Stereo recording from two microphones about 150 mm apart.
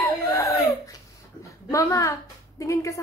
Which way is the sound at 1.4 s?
20° left (ahead or behind).